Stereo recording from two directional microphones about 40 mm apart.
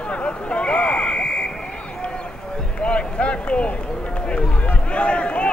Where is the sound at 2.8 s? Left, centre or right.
Left.